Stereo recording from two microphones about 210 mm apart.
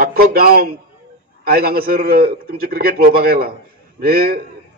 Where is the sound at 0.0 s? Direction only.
45° right (ahead or behind).